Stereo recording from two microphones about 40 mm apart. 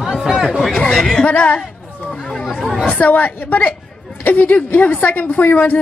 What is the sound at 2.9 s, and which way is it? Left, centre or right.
A woman's voice, left.